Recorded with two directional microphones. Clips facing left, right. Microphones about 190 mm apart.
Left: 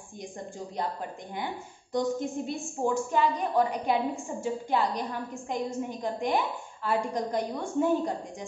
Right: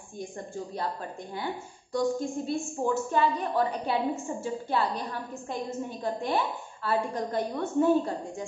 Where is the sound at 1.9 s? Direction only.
20° left (ahead or behind).